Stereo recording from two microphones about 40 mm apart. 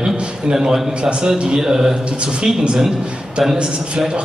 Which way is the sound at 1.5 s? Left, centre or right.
Centre.